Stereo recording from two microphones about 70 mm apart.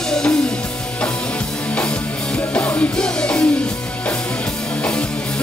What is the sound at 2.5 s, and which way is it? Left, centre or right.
Music, centre.